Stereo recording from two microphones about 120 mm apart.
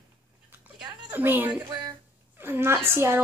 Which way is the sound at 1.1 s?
15° right (ahead or behind).